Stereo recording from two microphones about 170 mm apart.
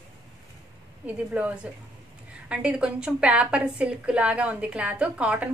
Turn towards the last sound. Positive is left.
turn(degrees=-10)  # may be behind; listen again after turning